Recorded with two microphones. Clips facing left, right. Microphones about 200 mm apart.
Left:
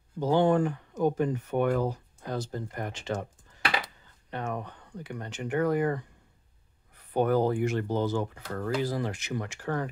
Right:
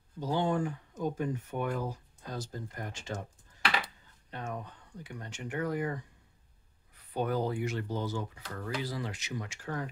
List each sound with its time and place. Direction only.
0.2 s speech: 65° left (ahead or behind)
4.3 s speech: 65° left (ahead or behind)
7.2 s speech: 50° left (ahead or behind)